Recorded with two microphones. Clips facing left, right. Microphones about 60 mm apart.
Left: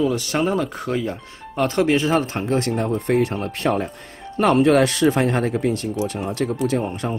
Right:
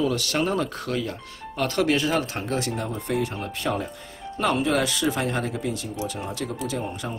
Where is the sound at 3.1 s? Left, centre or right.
Left.